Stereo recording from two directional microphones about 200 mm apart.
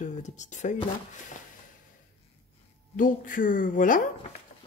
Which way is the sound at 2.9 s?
40° left (ahead or behind).